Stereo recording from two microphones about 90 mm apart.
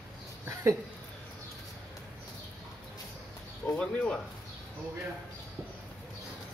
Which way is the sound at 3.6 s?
15° left (ahead or behind).